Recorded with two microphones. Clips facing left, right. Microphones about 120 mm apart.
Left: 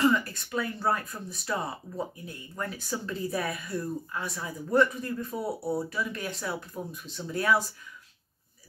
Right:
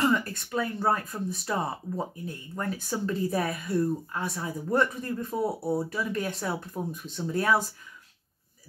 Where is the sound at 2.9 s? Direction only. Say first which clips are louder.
Right 4 dB; 35° right (ahead or behind).